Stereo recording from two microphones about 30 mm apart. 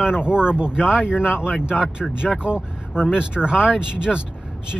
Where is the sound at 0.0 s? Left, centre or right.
Right.